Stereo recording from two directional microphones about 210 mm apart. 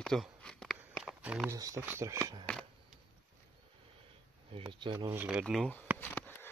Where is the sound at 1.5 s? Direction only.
15° right (ahead or behind).